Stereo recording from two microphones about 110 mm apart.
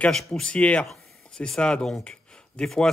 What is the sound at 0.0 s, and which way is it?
Speech, 5° left (ahead or behind).